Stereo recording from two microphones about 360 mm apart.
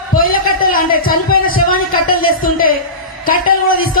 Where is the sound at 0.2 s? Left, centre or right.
Left.